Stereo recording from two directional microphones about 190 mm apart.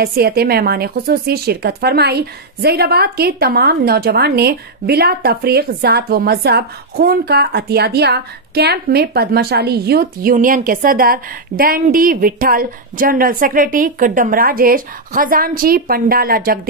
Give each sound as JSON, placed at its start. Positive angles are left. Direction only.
{"t": 0.0, "sound": "speech", "side_deg": -55}